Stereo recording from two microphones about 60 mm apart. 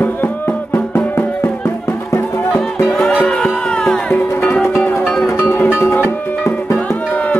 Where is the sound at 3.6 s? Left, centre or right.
Centre.